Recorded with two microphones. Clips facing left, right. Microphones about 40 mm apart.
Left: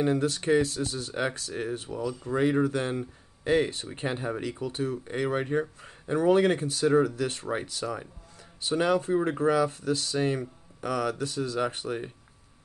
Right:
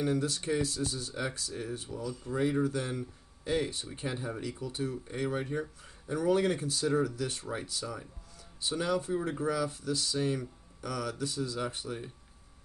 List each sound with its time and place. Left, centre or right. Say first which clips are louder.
0.0 s speech: left 5 dB; left